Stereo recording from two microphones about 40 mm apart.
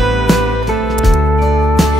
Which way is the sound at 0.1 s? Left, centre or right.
Centre.